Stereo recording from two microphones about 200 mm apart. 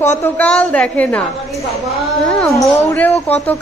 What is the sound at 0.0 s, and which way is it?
A woman's voice, 10° left (ahead or behind).